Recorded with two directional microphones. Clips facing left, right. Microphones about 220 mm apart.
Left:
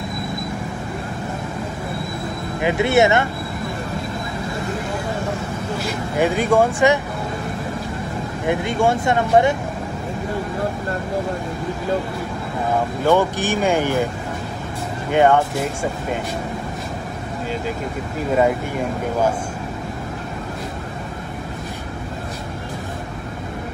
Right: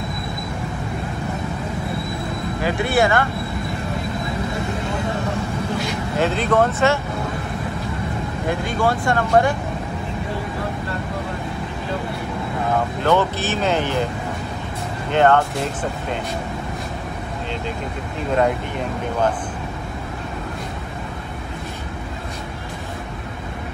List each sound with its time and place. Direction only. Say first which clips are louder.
2.6 s speech: left 3 dB; 20° left (ahead or behind)
6.1 s speech: left 2 dB; 15° left (ahead or behind)
8.5 s speech: left 3 dB; 25° left (ahead or behind)
13.0 s speech: left 3 dB; 10° left (ahead or behind)
15.0 s speech: left 1 dB; 10° left (ahead or behind)